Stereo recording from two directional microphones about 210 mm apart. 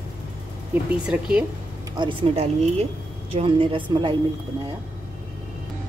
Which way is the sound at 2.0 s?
25° right (ahead or behind).